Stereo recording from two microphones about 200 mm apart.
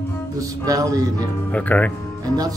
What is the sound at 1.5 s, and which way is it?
Speech, 5° left (ahead or behind).